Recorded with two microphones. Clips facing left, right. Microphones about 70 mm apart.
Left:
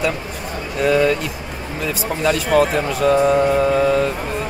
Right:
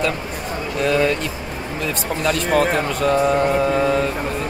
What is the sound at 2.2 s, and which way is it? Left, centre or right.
Speech, centre.